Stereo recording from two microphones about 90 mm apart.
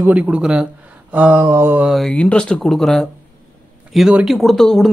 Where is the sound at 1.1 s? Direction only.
15° right (ahead or behind).